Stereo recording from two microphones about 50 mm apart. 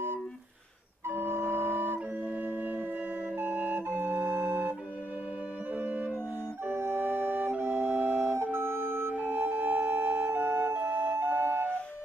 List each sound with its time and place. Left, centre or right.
1.0 s music: right
3.3 s flute: right
5.8 s music: right
6.6 s flute: right
8.4 s music: right
9.3 s flute: right